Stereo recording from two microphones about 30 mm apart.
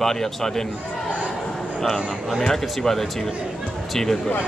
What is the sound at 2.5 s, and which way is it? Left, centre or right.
Speech, centre.